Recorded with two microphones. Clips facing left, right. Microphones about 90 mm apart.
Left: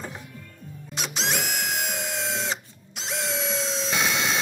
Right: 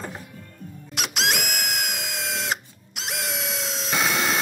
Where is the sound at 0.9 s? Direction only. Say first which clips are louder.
Right 3 dB; 70° right (ahead or behind).